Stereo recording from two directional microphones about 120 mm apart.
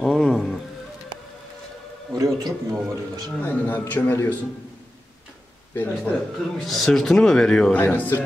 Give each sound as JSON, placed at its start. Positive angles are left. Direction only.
{"t": 0.0, "sound": "music", "side_deg": 5}
{"t": 2.1, "sound": "a man's voice", "side_deg": -30}
{"t": 3.4, "sound": "a man's voice", "side_deg": 15}
{"t": 5.8, "sound": "a man's voice", "side_deg": 15}
{"t": 6.6, "sound": "speech", "side_deg": 0}